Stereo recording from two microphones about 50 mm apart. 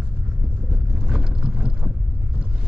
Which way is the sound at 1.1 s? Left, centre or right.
Centre.